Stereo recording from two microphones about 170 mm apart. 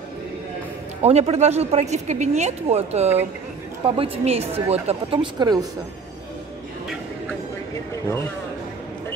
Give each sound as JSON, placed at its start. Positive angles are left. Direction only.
{"t": 1.0, "sound": "speech", "side_deg": -40}